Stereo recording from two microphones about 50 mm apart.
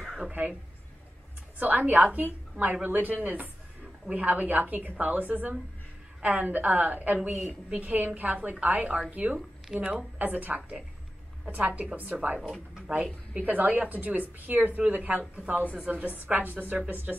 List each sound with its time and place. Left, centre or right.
0.2 s a sound: right
1.6 s a woman's voice: right
9.7 s speech: centre
10.1 s a woman's voice: right
12.4 s speech: centre
13.3 s a woman's voice: right